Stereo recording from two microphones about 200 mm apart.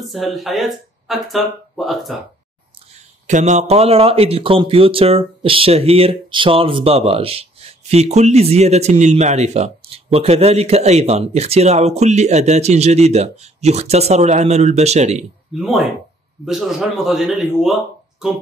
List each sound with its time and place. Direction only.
0.1 s speech: centre (ahead or behind)
3.3 s speech: 35° right (ahead or behind)
15.6 s speech: centre (ahead or behind)